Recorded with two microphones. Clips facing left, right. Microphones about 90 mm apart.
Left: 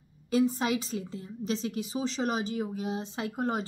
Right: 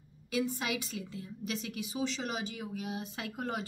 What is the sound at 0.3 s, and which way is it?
A woman's voice, 35° left (ahead or behind).